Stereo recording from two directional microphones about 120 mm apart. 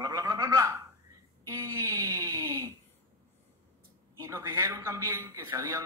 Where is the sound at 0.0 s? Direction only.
30° right (ahead or behind).